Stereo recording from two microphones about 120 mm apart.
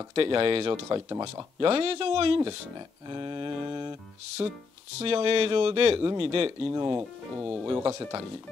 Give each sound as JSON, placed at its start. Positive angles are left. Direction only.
{"t": 0.1, "sound": "speech", "side_deg": -50}
{"t": 0.8, "sound": "speech", "side_deg": -30}
{"t": 1.2, "sound": "speech", "side_deg": -45}
{"t": 3.1, "sound": "mantra", "side_deg": -35}
{"t": 4.4, "sound": "speech", "side_deg": -35}
{"t": 5.0, "sound": "speech", "side_deg": -50}
{"t": 6.7, "sound": "speech", "side_deg": -30}
{"t": 7.0, "sound": "speech", "side_deg": -5}
{"t": 7.9, "sound": "speech", "side_deg": -25}